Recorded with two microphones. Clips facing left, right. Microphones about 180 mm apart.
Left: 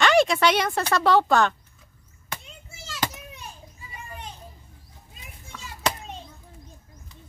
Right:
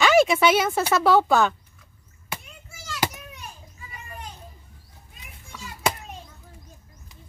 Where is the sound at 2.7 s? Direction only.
25° left (ahead or behind).